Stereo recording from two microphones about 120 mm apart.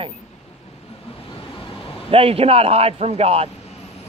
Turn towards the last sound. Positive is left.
turn(degrees=-55)  # may be behind; listen again after turning